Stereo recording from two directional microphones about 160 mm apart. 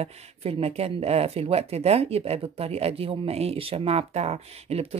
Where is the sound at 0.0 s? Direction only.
40° right (ahead or behind).